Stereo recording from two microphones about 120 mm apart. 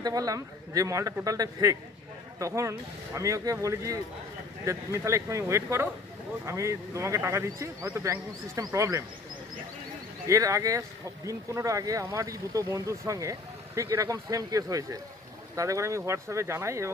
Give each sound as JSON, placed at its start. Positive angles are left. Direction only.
{"t": 0.0, "sound": "speech", "side_deg": -30}
{"t": 10.2, "sound": "speech", "side_deg": -25}